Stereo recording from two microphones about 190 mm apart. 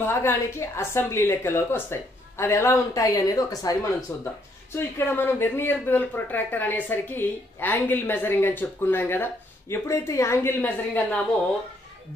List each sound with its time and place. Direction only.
0.0 s speech: 10° left (ahead or behind)